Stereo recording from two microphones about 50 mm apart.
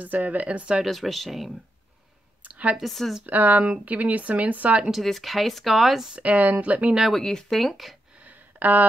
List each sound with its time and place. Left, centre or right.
0.0 s speech: right
0.8 s speech: centre
2.4 s a sound: right
2.8 s speech: centre
3.3 s speech: right
4.9 s speech: centre
6.1 s speech: right
7.1 s speech: centre
8.2 s a sound: right